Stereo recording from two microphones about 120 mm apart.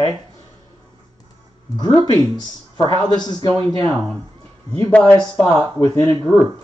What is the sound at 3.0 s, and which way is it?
Speech, 35° left (ahead or behind).